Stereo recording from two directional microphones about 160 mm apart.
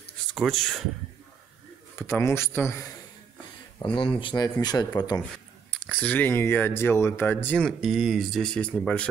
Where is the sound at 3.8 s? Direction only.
30° left (ahead or behind).